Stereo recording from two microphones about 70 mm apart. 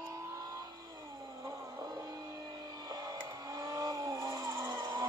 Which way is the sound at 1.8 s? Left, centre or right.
Right.